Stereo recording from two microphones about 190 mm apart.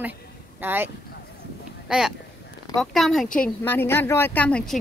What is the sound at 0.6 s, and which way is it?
A woman's voice, 10° right (ahead or behind).